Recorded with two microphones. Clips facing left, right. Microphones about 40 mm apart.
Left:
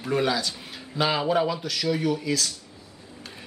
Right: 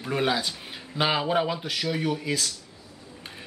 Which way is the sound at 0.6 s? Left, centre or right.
Centre.